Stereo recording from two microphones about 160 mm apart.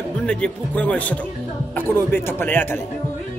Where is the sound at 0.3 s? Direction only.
5° left (ahead or behind).